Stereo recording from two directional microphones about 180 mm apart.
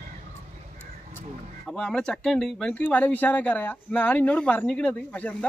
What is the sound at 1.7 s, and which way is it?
Speech, 5° left (ahead or behind).